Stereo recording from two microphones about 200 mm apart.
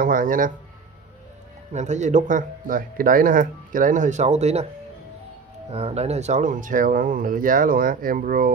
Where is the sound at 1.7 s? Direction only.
35° right (ahead or behind).